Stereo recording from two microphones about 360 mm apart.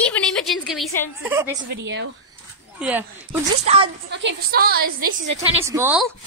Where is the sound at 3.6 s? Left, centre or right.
Centre.